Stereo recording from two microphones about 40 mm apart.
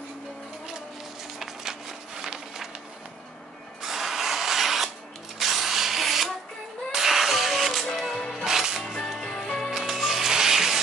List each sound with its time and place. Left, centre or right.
1.4 s run: centre
3.8 s drill: centre
5.4 s sanding: centre
6.9 s music: centre
7.9 s music: centre
8.5 s music: centre
8.8 s music: centre
9.7 s music: centre